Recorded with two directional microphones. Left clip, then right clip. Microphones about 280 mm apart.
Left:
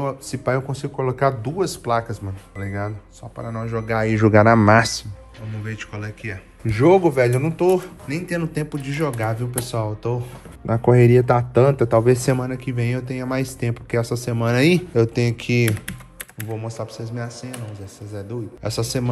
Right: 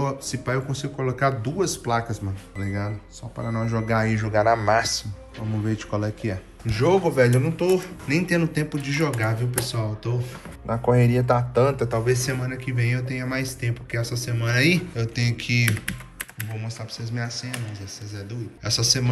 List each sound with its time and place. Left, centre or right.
0.0 s speech: centre
4.2 s speech: centre
5.7 s speech: centre
6.7 s speech: left
8.1 s speech: centre
10.7 s speech: left
12.0 s speech: centre
15.6 s speech: centre